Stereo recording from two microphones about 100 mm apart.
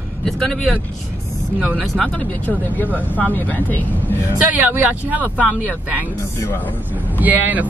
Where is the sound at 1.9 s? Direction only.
15° left (ahead or behind).